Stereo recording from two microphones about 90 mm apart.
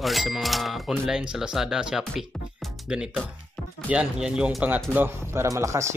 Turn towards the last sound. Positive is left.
turn(degrees=-35)  # may be behind; listen again after turning